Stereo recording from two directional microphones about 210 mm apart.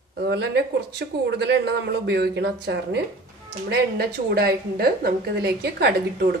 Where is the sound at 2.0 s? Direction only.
50° right (ahead or behind).